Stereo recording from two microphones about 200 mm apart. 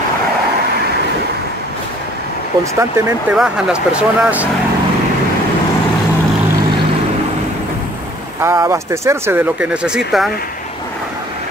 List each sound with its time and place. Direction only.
2.8 s speech: 5° right (ahead or behind)
8.4 s speech: 15° right (ahead or behind)